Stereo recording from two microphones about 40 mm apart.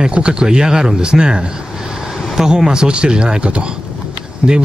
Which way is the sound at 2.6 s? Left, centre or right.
Right.